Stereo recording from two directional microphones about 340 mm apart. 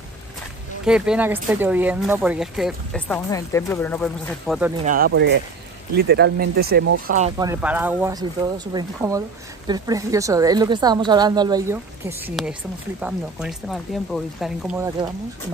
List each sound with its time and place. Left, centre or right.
0.8 s speech: centre
4.8 s a woman's voice: right; by 15.0 s centre